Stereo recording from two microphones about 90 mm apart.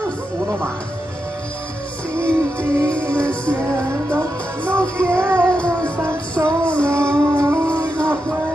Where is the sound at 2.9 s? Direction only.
10° left (ahead or behind).